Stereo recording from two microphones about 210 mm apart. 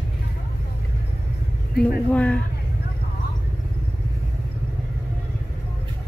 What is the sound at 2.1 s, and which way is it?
Speech, 5° left (ahead or behind).